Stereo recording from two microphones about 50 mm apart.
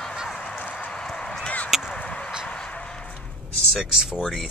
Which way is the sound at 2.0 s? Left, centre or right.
Centre.